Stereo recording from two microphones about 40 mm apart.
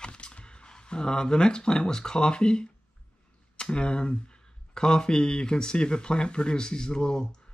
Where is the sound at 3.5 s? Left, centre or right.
Left.